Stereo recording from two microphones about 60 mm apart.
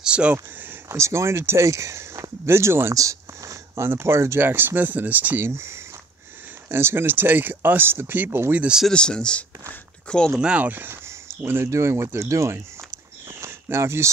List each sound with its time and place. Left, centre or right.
0.0 s a sound: centre
0.3 s speech: right
0.8 s speech: right
2.9 s speech: right
4.5 s speech: right
5.4 s speech: right
8.9 s speech: centre
10.4 s speech: right
10.7 s speech: right
11.1 s a sound: right
11.7 s speech: right
13.3 s a sound: right